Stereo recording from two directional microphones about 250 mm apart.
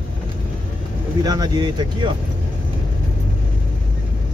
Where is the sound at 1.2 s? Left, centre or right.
Centre.